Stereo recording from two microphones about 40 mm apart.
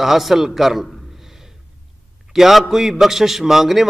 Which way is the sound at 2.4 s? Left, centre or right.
Centre.